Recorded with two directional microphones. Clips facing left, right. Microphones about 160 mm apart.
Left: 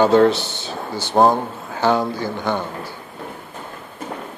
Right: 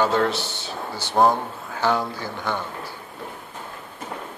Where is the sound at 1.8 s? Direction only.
25° left (ahead or behind).